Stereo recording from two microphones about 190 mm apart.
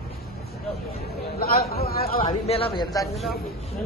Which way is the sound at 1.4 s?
55° left (ahead or behind).